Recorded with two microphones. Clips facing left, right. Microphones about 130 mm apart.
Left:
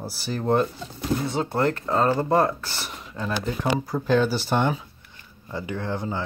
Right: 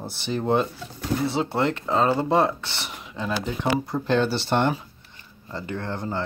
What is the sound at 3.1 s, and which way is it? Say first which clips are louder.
Speech: even; centre (ahead or behind).